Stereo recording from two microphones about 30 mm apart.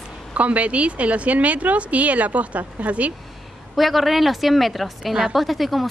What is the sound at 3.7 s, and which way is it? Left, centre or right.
A woman's voice, centre.